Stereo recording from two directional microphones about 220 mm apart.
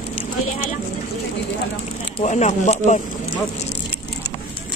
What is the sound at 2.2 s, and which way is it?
Speech, 30° left (ahead or behind).